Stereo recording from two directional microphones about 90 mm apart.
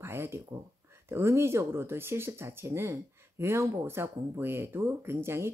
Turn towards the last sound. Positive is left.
turn(degrees=-30)  # may be behind; listen again after turning